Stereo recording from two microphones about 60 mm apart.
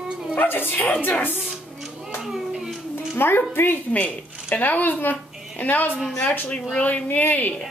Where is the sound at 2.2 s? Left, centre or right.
Centre.